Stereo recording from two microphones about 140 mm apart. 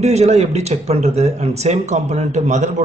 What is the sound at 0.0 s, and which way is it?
Speech, 50° right (ahead or behind).